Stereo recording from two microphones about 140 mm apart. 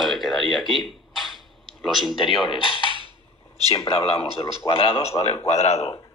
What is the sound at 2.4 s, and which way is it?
Speech, 35° left (ahead or behind).